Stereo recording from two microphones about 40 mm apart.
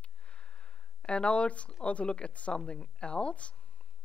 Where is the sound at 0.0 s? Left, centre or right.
Left.